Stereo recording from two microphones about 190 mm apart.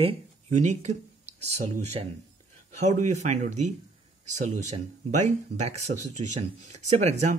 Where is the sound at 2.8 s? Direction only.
35° right (ahead or behind).